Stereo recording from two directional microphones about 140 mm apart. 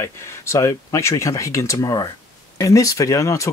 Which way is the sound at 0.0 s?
20° left (ahead or behind).